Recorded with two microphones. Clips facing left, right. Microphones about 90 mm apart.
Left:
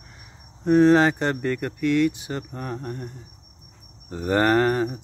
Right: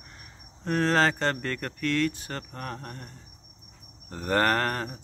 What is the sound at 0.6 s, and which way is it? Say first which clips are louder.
Speech: left 8 dB; 15° left (ahead or behind).